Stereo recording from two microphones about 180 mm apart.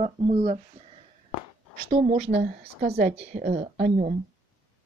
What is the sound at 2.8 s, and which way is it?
Speech, 60° right (ahead or behind).